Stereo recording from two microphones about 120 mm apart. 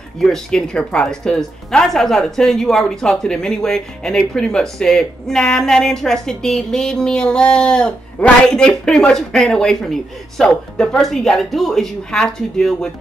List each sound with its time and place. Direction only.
0.2 s a woman's voice: 5° left (ahead or behind)